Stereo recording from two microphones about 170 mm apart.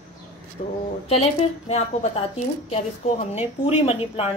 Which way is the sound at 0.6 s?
45° left (ahead or behind).